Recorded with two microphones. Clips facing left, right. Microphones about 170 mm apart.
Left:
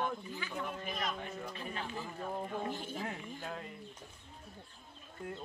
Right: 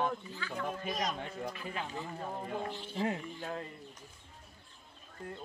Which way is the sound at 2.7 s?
45° left (ahead or behind).